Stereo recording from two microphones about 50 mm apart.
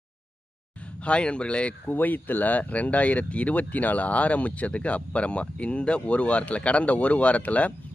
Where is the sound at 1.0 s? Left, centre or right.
Left.